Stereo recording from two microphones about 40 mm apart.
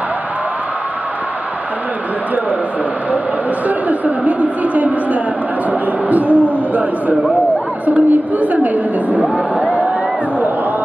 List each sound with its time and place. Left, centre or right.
3.6 s a woman's voice: right
6.0 s a sound: right
7.8 s a woman's voice: right